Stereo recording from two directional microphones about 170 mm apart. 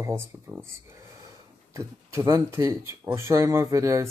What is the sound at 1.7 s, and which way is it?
Speech, 15° right (ahead or behind).